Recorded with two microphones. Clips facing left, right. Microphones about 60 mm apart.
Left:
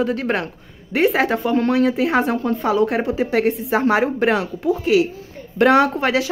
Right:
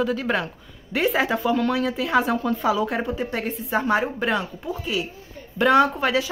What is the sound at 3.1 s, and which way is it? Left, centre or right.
Speech, left.